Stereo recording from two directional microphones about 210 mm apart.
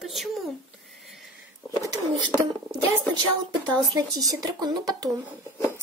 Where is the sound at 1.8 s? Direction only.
15° right (ahead or behind).